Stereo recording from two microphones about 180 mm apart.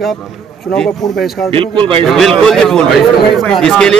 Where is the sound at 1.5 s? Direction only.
30° right (ahead or behind).